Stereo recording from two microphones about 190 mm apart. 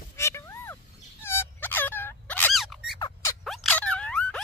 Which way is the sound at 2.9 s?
20° left (ahead or behind).